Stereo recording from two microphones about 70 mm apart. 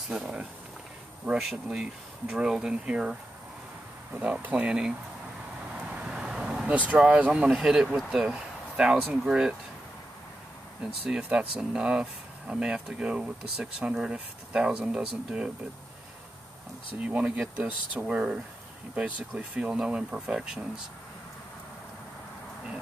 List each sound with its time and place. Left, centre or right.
0.1 s speech: centre
4.1 s speech: right
5.8 s vehicle: centre
7.2 s speech: centre
10.8 s speech: centre
17.0 s speech: centre